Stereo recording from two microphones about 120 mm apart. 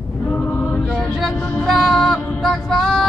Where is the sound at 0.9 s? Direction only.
5° left (ahead or behind).